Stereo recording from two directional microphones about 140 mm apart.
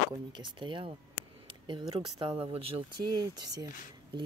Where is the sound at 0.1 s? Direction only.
35° right (ahead or behind).